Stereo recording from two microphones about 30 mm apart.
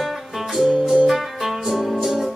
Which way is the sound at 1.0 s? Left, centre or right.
Centre.